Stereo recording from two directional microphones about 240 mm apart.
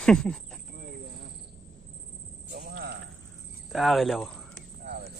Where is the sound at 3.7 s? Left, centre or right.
Centre.